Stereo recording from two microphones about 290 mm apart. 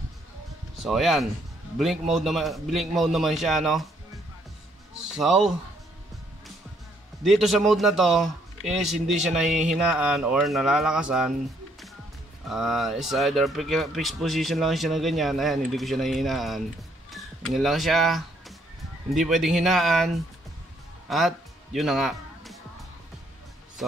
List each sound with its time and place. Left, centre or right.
0.8 s speech: centre
5.1 s speech: centre
7.2 s speech: centre
12.4 s speech: centre
21.1 s music: centre